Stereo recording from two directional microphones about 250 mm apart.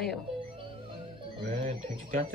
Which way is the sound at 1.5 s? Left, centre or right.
Right.